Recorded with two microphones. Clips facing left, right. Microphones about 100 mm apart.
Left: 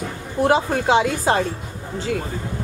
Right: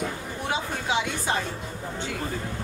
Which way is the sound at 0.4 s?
75° left (ahead or behind).